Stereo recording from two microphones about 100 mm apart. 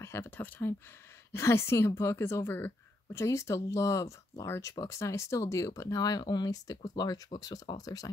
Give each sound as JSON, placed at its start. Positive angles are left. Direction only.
{"t": 0.0, "sound": "a woman's voice", "side_deg": 25}